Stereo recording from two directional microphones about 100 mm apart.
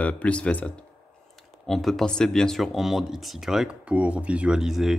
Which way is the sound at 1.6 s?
Centre (ahead or behind).